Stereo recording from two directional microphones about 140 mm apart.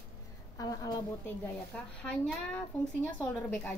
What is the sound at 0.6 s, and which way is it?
Speech, 25° left (ahead or behind).